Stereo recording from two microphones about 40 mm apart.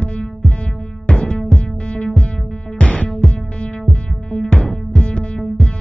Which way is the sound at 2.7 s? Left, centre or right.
Left.